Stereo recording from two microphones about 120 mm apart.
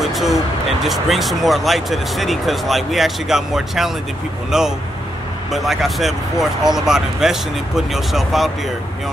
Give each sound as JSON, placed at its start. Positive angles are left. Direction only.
{"t": 0.0, "sound": "speech", "side_deg": 0}